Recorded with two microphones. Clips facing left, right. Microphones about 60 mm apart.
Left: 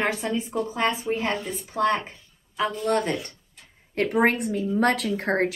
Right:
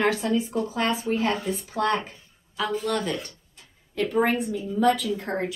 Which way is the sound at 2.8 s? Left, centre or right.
Left.